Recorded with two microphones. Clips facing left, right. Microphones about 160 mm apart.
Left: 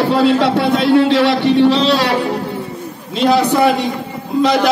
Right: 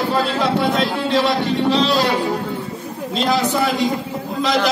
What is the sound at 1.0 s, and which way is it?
Speech, 75° left (ahead or behind).